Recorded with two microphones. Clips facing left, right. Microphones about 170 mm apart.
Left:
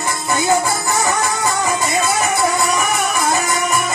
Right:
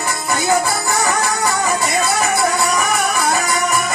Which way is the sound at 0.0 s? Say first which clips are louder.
Left 1 dB; 15° left (ahead or behind).